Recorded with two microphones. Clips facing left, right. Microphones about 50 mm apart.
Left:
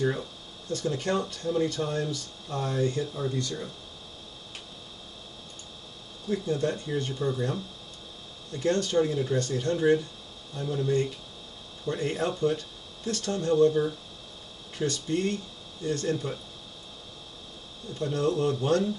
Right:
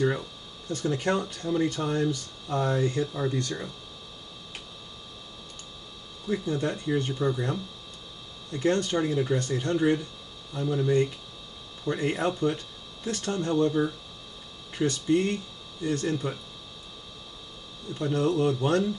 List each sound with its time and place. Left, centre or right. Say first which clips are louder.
0.7 s speech: right 2 dB; right
6.3 s speech: left 1 dB; right
17.9 s speech: right 2 dB; right